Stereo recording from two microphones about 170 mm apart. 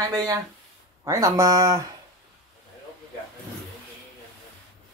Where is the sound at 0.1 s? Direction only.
20° right (ahead or behind).